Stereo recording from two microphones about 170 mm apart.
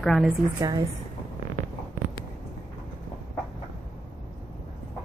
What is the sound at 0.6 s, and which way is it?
Speech, 25° right (ahead or behind).